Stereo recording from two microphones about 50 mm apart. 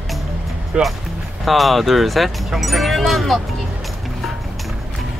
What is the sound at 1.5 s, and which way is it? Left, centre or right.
Speech, centre.